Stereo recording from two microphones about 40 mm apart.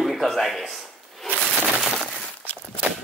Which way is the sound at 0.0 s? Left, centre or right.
Centre.